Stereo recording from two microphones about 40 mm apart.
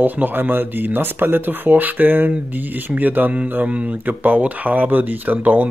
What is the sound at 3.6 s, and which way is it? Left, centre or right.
Speech, right.